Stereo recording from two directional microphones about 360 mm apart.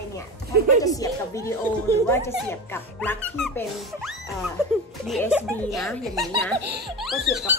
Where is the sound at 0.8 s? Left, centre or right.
Centre.